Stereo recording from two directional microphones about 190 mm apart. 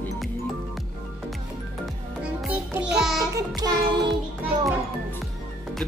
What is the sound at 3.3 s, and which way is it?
Music, 20° right (ahead or behind).